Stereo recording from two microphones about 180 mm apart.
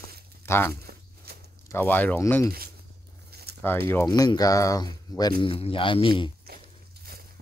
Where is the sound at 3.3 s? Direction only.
60° right (ahead or behind).